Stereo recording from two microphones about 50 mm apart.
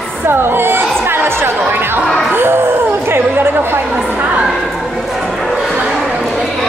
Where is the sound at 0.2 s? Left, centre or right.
Right.